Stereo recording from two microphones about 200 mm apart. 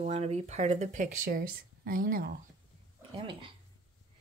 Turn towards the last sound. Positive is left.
turn(degrees=-25)  # may be behind; listen again after turning